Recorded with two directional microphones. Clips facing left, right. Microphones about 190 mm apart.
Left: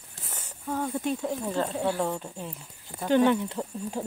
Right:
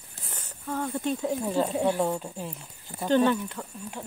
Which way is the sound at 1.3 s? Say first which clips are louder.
Right 3 dB; 10° right (ahead or behind).